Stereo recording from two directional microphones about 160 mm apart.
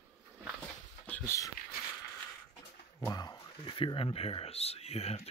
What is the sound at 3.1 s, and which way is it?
Speech, 25° left (ahead or behind).